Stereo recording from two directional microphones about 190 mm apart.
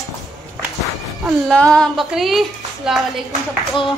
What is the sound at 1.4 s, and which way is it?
Speech, 5° left (ahead or behind).